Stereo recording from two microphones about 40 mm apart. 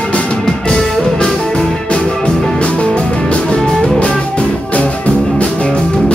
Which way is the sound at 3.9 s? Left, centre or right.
Left.